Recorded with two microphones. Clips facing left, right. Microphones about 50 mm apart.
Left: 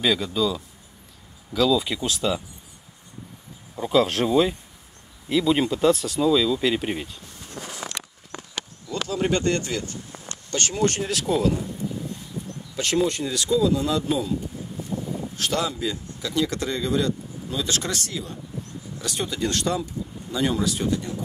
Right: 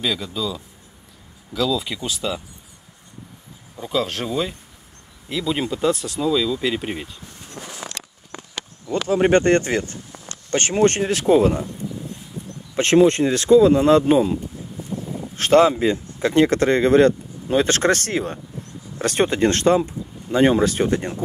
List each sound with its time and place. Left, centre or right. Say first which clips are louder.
0.0 s speech: left 2 dB; centre
3.7 s speech: left 3 dB; centre
8.9 s speech: right 8 dB; right
12.7 s speech: right 9 dB; right
15.3 s speech: right 13 dB; right